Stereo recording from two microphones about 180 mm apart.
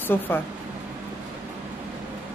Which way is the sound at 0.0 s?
10° left (ahead or behind).